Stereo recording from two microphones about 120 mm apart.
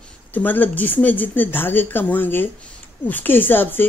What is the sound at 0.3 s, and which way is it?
Speech, 15° left (ahead or behind).